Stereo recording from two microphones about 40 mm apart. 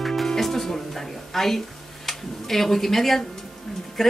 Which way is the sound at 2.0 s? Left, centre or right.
Centre.